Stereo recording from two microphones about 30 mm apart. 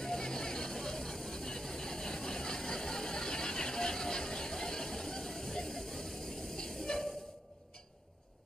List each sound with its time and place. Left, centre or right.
0.0 s vehicle: centre